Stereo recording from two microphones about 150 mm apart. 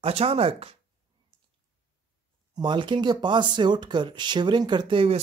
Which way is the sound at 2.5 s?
30° right (ahead or behind).